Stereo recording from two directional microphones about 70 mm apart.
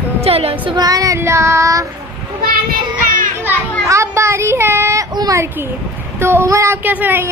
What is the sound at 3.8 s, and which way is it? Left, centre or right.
Child singing, right.